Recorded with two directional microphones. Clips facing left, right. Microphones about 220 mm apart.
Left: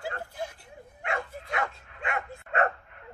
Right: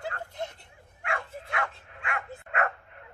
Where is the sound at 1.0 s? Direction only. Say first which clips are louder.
Left 2 dB; 25° left (ahead or behind).